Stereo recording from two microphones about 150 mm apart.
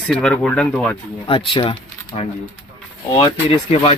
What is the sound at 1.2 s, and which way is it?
Speech, 35° left (ahead or behind).